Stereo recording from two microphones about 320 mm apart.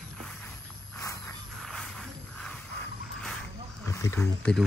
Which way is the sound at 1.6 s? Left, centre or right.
Centre.